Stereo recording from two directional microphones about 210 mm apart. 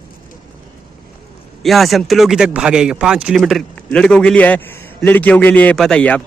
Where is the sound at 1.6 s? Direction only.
Centre (ahead or behind).